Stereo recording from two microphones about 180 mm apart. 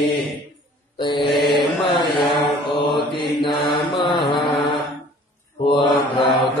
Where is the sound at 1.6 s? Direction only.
Centre (ahead or behind).